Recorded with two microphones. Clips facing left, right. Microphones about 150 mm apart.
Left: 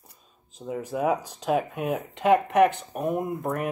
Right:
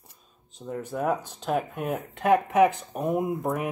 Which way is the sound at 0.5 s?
5° left (ahead or behind).